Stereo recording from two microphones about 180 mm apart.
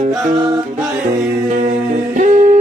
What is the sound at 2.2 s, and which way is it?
Humming, 50° right (ahead or behind).